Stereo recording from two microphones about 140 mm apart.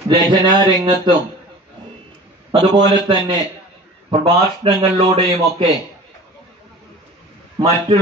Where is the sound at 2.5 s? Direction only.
30° right (ahead or behind).